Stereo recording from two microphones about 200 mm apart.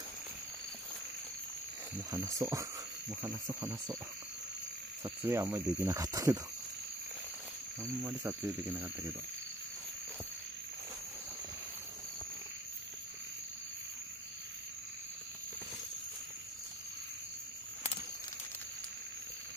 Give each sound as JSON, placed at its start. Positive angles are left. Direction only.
{"t": 2.0, "sound": "speech", "side_deg": -15}
{"t": 5.0, "sound": "speech", "side_deg": -15}
{"t": 7.8, "sound": "speech", "side_deg": -15}